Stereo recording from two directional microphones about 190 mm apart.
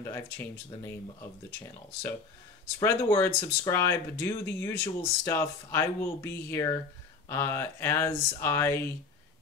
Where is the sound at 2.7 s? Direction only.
15° left (ahead or behind).